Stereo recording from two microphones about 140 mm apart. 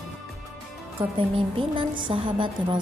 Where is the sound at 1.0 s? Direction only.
35° right (ahead or behind).